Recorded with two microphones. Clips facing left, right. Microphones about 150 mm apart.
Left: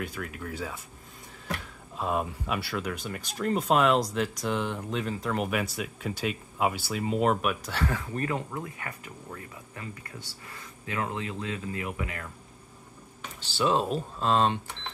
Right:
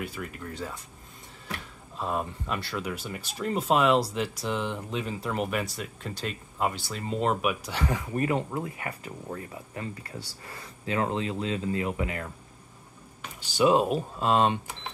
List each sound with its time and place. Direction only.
0.0 s speech: centre (ahead or behind)
2.0 s speech: 5° left (ahead or behind)
7.4 s speech: 10° right (ahead or behind)
13.2 s speech: 10° right (ahead or behind)